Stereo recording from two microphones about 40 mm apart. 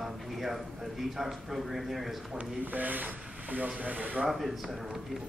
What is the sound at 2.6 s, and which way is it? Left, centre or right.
Speech, right.